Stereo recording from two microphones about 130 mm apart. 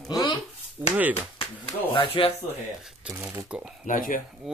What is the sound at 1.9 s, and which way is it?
Speech, 45° left (ahead or behind).